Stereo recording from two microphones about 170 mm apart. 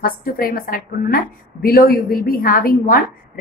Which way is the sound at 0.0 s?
60° left (ahead or behind).